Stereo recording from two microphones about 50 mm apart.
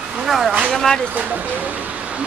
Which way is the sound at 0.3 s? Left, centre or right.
Centre.